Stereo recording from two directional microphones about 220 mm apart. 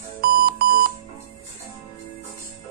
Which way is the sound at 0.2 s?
45° right (ahead or behind).